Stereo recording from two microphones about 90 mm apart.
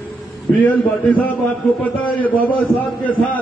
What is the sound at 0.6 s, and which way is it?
A man's voice, 15° left (ahead or behind).